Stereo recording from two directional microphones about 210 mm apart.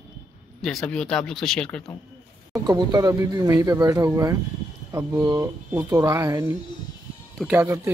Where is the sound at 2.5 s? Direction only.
15° right (ahead or behind).